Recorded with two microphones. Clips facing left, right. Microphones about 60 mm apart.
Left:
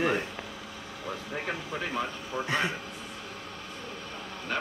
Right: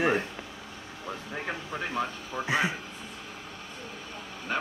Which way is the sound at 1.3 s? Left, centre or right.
Centre.